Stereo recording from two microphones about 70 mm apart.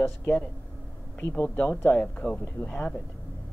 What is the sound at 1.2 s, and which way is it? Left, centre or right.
Speech, left.